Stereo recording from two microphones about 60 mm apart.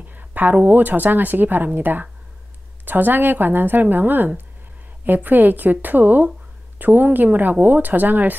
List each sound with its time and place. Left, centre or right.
0.1 s speech: right